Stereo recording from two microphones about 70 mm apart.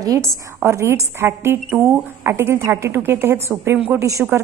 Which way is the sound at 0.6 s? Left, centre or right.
Right.